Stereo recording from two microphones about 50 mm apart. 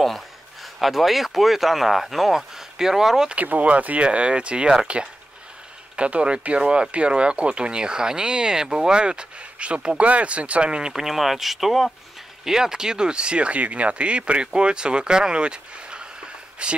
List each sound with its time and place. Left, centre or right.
0.0 s speech: centre
3.3 s speech: right